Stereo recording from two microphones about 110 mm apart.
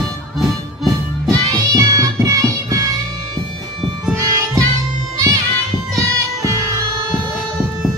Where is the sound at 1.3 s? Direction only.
30° right (ahead or behind).